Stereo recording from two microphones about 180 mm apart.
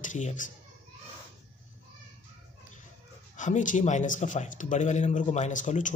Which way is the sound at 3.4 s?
45° left (ahead or behind).